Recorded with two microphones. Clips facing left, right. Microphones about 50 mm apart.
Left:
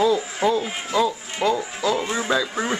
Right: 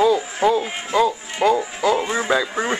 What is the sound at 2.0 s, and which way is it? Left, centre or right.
Speech, centre.